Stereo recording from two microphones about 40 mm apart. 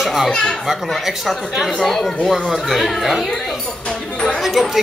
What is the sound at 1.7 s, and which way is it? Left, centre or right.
Speech, centre.